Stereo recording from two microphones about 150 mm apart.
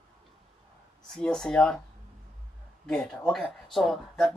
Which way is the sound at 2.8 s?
5° left (ahead or behind).